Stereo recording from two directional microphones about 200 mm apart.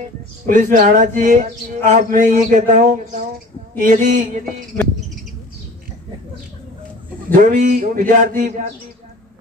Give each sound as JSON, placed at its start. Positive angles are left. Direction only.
{"t": 0.5, "sound": "speech", "side_deg": -40}
{"t": 7.3, "sound": "speech", "side_deg": -40}